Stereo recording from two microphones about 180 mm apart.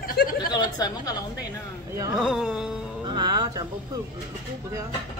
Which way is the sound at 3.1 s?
25° right (ahead or behind).